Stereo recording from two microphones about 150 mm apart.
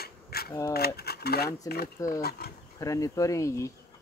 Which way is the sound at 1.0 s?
90° left.